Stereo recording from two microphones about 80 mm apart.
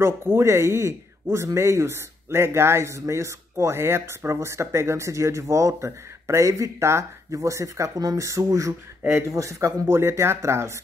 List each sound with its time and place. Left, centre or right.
0.0 s speech: right
9.8 s speech: right